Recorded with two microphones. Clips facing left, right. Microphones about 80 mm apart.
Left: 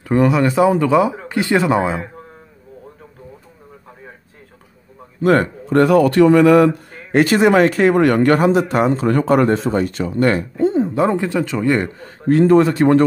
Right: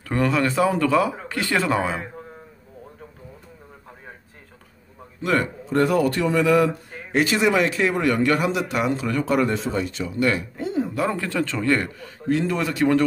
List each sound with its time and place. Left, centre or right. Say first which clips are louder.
0.1 s speech: left 7 dB; centre
5.2 s a man's voice: left 8 dB; left
5.7 s a man's voice: left 7 dB; left
12.0 s a man's voice: left 9 dB; left